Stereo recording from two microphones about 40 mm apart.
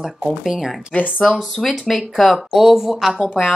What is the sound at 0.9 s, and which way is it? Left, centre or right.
Speech, left.